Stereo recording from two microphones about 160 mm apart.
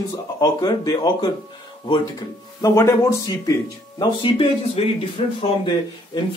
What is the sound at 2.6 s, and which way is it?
Speech, 20° left (ahead or behind).